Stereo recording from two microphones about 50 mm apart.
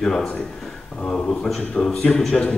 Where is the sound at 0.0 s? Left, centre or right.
Centre.